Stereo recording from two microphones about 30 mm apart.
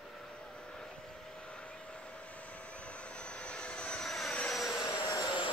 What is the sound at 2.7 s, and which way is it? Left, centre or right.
Vehicle, left.